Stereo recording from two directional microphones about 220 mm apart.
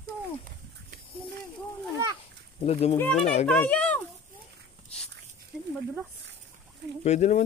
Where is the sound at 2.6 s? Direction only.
25° left (ahead or behind).